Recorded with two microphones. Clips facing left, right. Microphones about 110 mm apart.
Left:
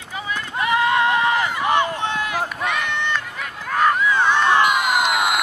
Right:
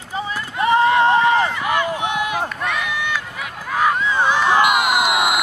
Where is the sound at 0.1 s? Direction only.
35° right (ahead or behind).